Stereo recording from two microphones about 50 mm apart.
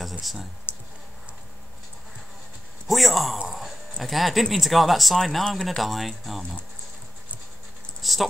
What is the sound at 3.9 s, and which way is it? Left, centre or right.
Speech, centre.